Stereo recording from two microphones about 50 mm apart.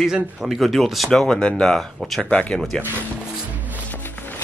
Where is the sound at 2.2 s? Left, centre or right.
Left.